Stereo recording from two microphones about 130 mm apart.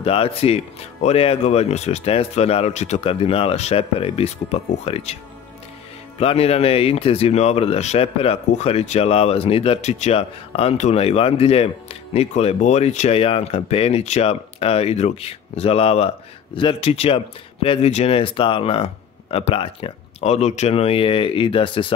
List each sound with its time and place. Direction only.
0.0 s speech: 45° left (ahead or behind)
6.1 s speech: 50° left (ahead or behind)